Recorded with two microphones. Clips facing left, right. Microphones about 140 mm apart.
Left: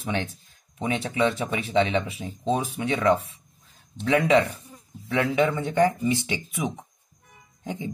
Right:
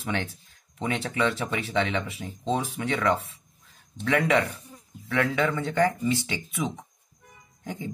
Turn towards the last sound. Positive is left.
turn(degrees=20)  # may be behind; listen again after turning